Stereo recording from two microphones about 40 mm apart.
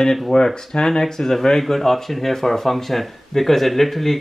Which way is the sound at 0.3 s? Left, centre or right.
Centre.